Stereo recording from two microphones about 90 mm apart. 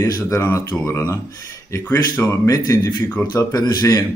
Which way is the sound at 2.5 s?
40° left (ahead or behind).